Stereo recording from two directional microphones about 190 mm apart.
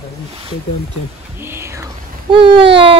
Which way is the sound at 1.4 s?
15° right (ahead or behind).